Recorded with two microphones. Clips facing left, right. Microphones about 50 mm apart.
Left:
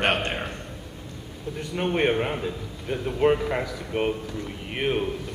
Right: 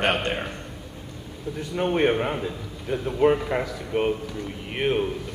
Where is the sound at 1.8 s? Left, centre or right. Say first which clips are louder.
Right 1 dB; centre.